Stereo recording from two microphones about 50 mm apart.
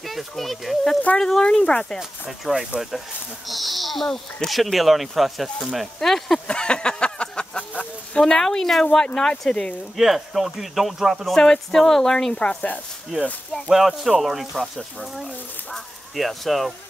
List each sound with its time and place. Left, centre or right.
0.0 s speech: centre
2.0 s speech: centre
6.4 s a sound: centre
8.2 s speech: centre
9.9 s speech: centre
11.2 s speech: centre
13.7 s speech: centre
15.7 s speech: centre